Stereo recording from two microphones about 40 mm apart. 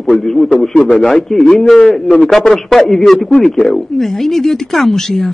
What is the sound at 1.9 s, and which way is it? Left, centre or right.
Speech, left.